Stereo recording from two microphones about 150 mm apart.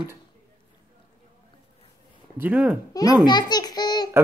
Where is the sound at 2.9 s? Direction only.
25° left (ahead or behind).